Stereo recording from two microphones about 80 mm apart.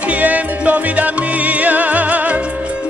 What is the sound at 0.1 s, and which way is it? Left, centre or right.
Music, centre.